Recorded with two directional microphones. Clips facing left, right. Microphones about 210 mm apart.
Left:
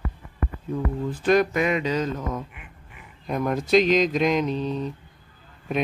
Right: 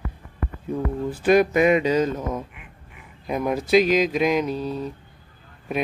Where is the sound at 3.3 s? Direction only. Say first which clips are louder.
Right 1 dB; 5° right (ahead or behind).